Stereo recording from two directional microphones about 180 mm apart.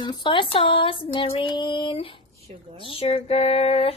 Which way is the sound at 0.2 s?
30° left (ahead or behind).